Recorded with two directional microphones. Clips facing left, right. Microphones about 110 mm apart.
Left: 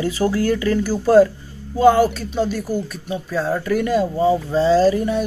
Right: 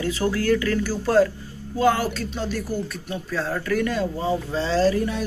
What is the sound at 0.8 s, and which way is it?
Speech, 5° left (ahead or behind).